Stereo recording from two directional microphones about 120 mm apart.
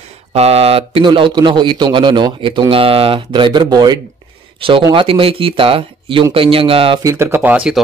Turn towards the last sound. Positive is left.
turn(degrees=-10)  # may be behind; listen again after turning